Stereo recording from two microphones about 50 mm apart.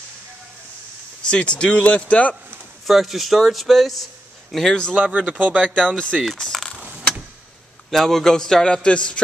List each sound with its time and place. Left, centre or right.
1.2 s speech: left
2.9 s a man's voice: centre
4.7 s speech: centre
5.0 s speech: right
5.9 s a man's voice: centre
6.3 s coin: centre
6.8 s vehicle: right
7.9 s a man's voice: centre; by 9.2 s left